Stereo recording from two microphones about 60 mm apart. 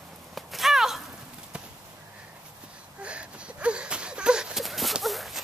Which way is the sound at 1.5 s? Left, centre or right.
Centre.